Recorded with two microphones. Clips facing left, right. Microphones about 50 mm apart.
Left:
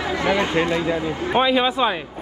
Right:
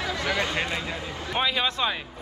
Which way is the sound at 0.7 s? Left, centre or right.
Left.